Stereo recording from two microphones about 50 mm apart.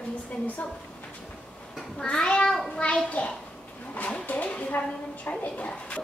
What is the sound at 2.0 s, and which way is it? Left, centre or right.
A child's voice, centre.